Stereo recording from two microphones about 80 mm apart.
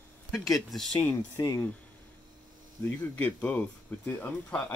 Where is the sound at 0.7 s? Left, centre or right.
Centre.